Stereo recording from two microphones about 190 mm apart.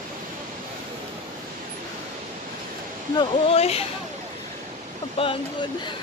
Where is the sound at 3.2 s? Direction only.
30° left (ahead or behind).